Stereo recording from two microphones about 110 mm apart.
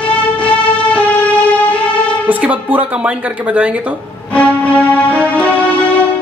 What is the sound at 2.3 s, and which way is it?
Speech, 15° right (ahead or behind).